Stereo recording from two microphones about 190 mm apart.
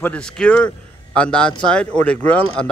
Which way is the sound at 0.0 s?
5° left (ahead or behind).